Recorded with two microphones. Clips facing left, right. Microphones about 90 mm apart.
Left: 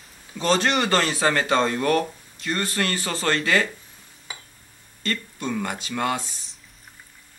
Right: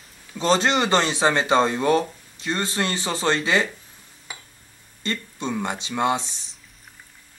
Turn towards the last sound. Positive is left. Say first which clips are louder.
# right 3 dB
turn(degrees=-25)  # may be behind; listen again after turning